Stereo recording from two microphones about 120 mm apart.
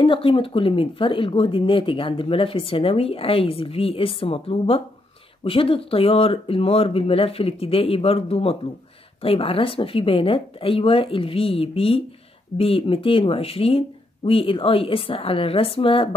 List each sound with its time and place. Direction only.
0.0 s speech: 50° left (ahead or behind)